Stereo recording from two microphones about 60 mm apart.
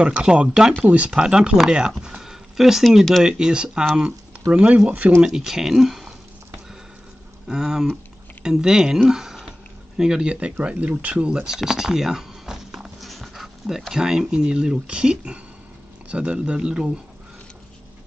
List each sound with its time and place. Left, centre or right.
0.0 s speech: centre
5.2 s speech: centre
7.4 s speech: centre
9.1 s a sound: centre
9.9 s speech: centre